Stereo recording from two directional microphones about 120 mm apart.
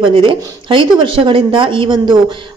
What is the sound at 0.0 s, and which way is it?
A woman's voice, 45° right (ahead or behind).